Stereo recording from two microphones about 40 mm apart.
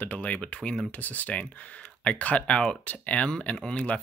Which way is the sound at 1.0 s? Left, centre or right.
Left.